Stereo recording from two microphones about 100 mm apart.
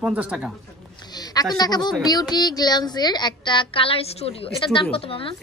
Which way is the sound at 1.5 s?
40° left (ahead or behind).